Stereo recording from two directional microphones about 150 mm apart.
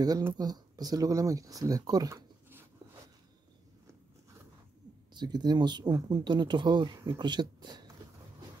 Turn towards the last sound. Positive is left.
turn(degrees=-30)  # may be behind; listen again after turning